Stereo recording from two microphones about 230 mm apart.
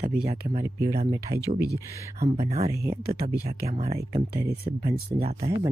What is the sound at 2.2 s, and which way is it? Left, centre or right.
Speech, right.